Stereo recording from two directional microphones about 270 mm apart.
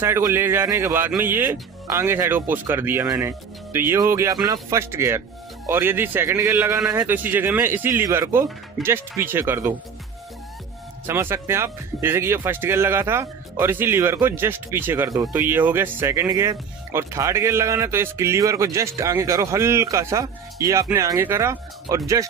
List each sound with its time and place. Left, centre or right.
0.0 s speech: centre
11.1 s speech: centre